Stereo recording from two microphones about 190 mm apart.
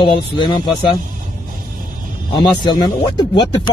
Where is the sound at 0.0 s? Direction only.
25° left (ahead or behind).